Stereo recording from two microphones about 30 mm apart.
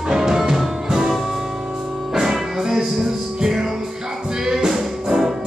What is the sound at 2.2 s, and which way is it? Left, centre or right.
Music, centre.